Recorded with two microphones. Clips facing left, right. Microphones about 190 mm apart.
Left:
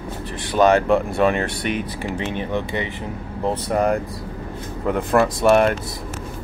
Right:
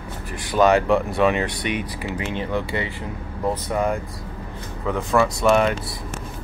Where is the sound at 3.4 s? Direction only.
30° left (ahead or behind).